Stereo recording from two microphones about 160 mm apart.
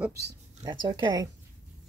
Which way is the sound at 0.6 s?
30° right (ahead or behind).